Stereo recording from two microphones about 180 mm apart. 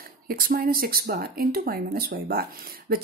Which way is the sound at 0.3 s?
55° right (ahead or behind).